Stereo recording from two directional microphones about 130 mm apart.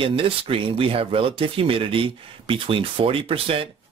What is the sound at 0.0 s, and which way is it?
Speech, 45° right (ahead or behind).